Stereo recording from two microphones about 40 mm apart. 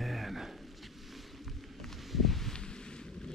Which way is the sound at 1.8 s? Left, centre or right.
Centre.